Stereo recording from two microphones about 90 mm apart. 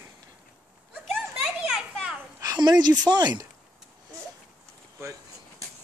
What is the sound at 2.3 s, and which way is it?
Speech, 45° right (ahead or behind).